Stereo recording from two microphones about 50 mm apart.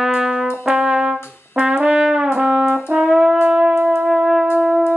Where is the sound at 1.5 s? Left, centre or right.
Right.